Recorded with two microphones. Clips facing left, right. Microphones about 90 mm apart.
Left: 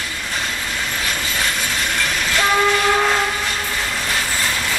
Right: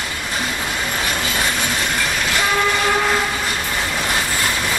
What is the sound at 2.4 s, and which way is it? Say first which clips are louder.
Train: left 3 dB; 5° left (ahead or behind).